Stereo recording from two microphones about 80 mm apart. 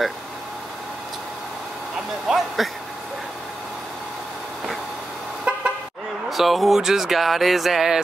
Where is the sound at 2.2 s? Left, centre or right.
Centre.